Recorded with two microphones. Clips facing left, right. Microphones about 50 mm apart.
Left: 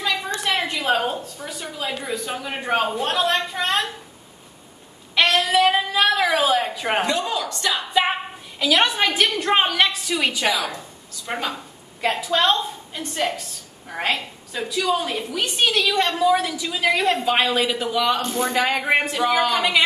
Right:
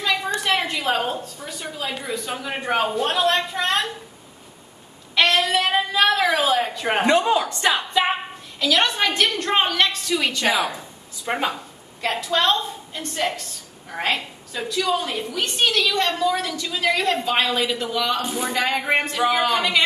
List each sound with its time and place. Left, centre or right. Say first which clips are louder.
0.8 s a woman's voice: left 1 dB; centre
5.1 s a woman's voice: left 1 dB; centre
7.1 s a woman's voice: right 5 dB; right
8.5 s a woman's voice: left 1 dB; centre
10.5 s a woman's voice: right 2 dB; right
12.0 s a woman's voice: left 1 dB; centre
19.2 s a woman's voice: right 1 dB; centre